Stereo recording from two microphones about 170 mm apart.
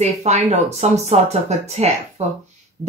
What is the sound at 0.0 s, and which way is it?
Speech, 40° right (ahead or behind).